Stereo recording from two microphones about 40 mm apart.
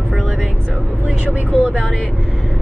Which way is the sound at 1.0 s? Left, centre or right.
Right.